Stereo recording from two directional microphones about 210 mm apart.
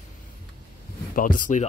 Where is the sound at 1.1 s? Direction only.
40° left (ahead or behind).